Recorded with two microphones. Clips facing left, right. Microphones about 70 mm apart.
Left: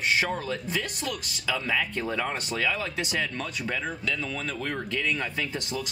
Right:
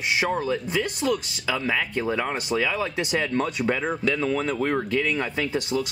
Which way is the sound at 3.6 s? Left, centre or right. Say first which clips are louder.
Right 7 dB; right.